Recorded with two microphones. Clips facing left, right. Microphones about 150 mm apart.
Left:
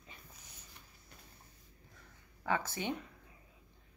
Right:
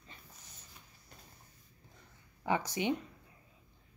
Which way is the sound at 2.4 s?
15° right (ahead or behind).